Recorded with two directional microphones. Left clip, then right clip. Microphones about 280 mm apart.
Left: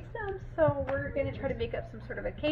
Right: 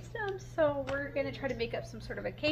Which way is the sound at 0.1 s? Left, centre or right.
Centre.